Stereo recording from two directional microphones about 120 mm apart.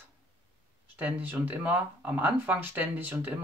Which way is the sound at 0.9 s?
15° right (ahead or behind).